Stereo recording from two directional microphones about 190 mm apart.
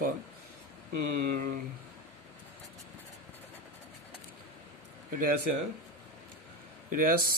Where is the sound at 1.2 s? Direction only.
50° right (ahead or behind).